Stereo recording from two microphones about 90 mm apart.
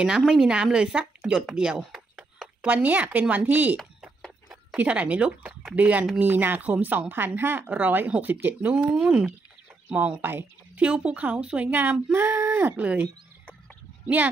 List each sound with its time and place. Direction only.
0.0 s speech: 5° right (ahead or behind)
1.8 s a sound: 5° right (ahead or behind)
2.6 s speech: 15° right (ahead or behind)
8.9 s speech: 5° right (ahead or behind)